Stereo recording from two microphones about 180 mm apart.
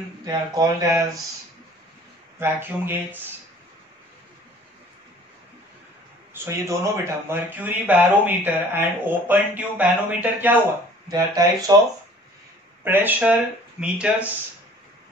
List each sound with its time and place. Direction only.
0.2 s speech: 20° right (ahead or behind)
2.3 s speech: 10° right (ahead or behind)
6.3 s speech: 15° right (ahead or behind)
11.1 s speech: 20° right (ahead or behind)
12.8 s speech: 10° right (ahead or behind)